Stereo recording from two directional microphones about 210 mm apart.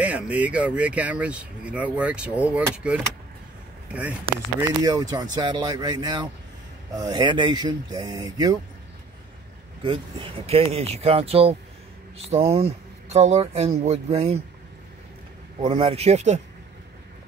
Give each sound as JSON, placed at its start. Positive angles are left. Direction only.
{"t": 0.0, "sound": "speech", "side_deg": -5}
{"t": 9.8, "sound": "speech", "side_deg": -25}
{"t": 15.6, "sound": "speech", "side_deg": -25}